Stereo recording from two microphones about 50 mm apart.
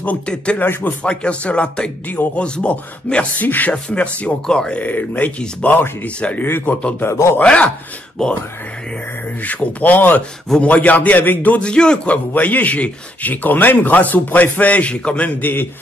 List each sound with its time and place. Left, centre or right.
0.6 s a man's voice: left
1.0 s speech: left
3.4 s a man's voice: left
3.7 s speech: left
4.8 s a man's voice: left
6.4 s a man's voice: left
7.1 s speech: left
7.4 s speech: left
8.2 s speech: centre
9.4 s a man's voice: left
11.6 s speech: centre
12.1 s a man's voice: left
15.4 s a man's voice: left